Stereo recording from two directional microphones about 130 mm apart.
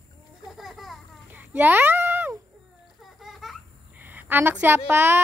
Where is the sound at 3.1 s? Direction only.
Centre (ahead or behind).